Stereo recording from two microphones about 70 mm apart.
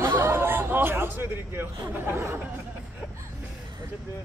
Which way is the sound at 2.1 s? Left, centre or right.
Right.